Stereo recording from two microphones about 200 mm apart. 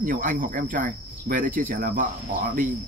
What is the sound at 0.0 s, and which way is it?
Cricket, 45° right (ahead or behind).